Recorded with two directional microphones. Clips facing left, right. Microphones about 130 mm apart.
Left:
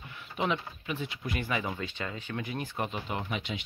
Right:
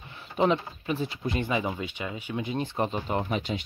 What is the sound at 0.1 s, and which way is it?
Speech, 35° right (ahead or behind).